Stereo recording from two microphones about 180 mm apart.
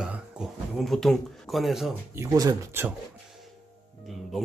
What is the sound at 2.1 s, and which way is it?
Speech, 20° right (ahead or behind).